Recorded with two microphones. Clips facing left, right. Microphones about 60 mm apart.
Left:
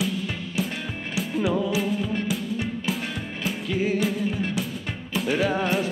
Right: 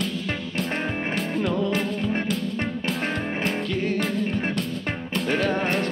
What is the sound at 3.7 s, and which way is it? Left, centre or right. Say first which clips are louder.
Music: left 1 dB; centre.